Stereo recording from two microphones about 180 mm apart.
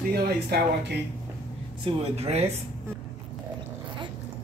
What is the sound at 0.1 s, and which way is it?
Speech, 60° right (ahead or behind).